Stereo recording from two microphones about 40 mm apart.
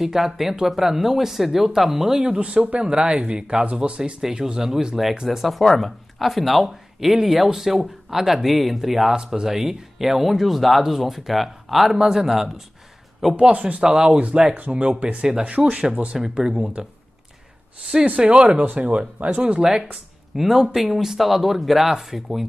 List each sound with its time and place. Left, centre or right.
0.0 s speech: centre
2.2 s speech: right
4.2 s speech: centre
5.2 s speech: centre
5.6 s speech: centre
13.4 s speech: right
16.8 s speech: centre
18.0 s speech: right
19.6 s speech: centre